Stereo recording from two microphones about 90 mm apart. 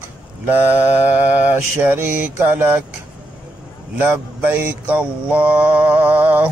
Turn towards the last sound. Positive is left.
turn(degrees=-20)  # may be behind; listen again after turning